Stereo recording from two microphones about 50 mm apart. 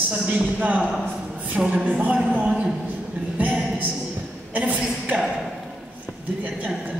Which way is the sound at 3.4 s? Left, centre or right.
Right.